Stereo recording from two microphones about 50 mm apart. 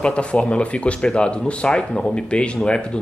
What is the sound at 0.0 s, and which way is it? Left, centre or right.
Speech, left.